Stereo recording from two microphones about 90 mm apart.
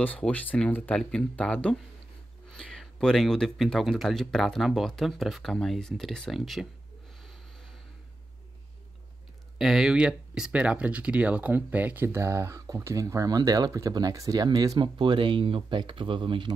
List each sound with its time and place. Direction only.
0.3 s speech: 20° left (ahead or behind); by 6.7 s centre (ahead or behind)
9.6 s speech: 5° right (ahead or behind); by 14.8 s 45° right (ahead or behind)
14.8 s speech: 60° right (ahead or behind)